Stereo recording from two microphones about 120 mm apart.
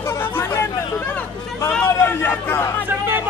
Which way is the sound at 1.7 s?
15° left (ahead or behind).